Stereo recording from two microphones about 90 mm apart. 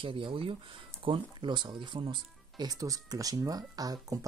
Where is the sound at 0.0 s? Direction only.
70° right (ahead or behind).